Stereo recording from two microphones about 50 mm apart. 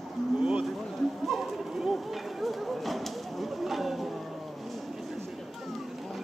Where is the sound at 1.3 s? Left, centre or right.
Centre.